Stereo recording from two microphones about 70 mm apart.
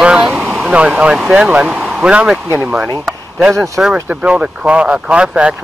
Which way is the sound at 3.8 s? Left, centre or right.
Centre.